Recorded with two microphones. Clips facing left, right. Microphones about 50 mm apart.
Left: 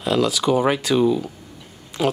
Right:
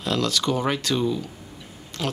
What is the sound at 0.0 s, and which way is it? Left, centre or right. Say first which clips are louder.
Speech: left 5 dB; centre.